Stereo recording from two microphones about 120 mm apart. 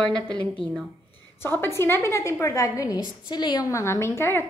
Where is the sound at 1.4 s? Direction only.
20° left (ahead or behind); by 3.7 s 35° left (ahead or behind).